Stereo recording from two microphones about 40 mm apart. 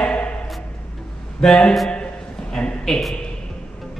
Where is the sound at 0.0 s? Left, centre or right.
Left.